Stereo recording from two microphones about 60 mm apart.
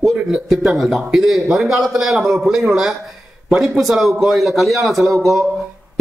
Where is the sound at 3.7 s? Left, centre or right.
Centre.